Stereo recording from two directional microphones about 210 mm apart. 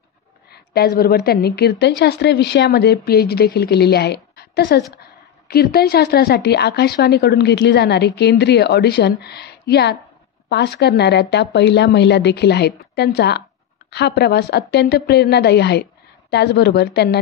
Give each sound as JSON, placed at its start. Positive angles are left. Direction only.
{"t": 0.5, "sound": "a woman's voice", "side_deg": 50}